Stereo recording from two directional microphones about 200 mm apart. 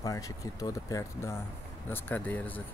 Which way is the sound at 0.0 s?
15° left (ahead or behind).